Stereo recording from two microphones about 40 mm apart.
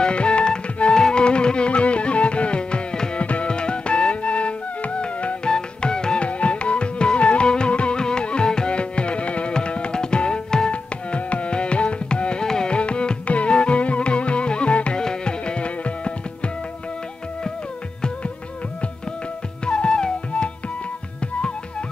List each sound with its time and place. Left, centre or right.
0.0 s music: left
10.7 s music: left
19.6 s music: left